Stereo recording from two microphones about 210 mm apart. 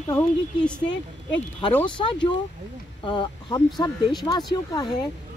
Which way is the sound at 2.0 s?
20° left (ahead or behind).